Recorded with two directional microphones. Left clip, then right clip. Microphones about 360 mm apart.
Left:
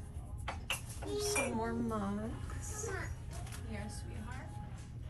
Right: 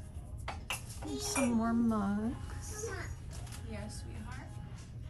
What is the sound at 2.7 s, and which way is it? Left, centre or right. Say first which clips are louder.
Music: right 1 dB; centre.